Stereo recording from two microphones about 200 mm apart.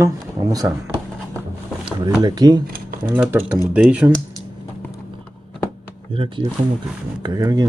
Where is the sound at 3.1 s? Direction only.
10° right (ahead or behind).